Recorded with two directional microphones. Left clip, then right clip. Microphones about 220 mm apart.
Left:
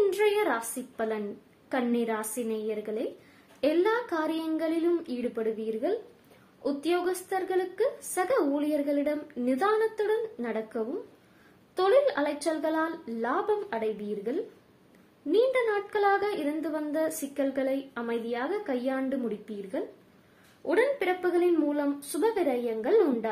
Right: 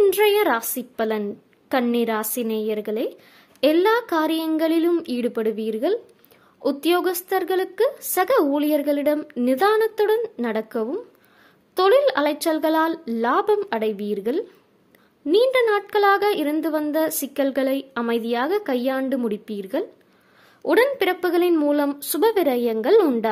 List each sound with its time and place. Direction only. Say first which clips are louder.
0.2 s a woman's voice: right 8 dB; 40° right (ahead or behind)